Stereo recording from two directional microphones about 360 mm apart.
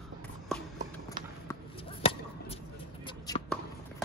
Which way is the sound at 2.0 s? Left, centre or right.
Centre.